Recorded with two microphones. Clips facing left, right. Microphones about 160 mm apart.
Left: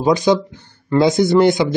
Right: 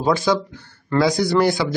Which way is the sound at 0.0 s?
20° left (ahead or behind).